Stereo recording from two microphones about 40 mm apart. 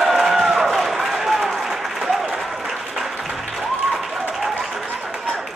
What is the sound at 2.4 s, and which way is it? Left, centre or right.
Applause, centre.